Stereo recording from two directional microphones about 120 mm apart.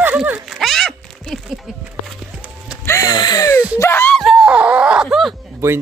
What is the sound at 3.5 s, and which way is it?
Speech, 20° left (ahead or behind).